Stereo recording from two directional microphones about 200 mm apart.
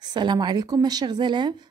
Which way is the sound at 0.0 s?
20° right (ahead or behind).